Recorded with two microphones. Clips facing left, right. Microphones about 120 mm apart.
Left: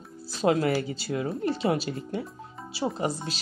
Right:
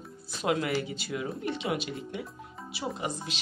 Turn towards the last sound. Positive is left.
turn(degrees=40)  # may be behind; listen again after turning